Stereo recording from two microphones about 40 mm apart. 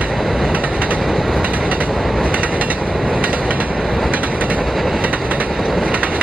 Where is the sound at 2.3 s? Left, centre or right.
Right.